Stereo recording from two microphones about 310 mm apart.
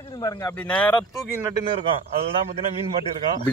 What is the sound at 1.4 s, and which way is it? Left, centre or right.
Speech, centre.